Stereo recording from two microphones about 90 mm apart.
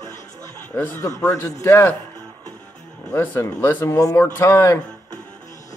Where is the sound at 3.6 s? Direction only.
25° left (ahead or behind).